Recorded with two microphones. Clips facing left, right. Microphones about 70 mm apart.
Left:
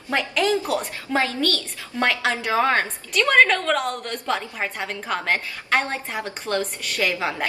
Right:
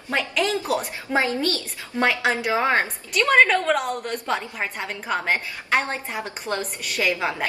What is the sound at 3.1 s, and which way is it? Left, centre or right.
A woman's voice, centre.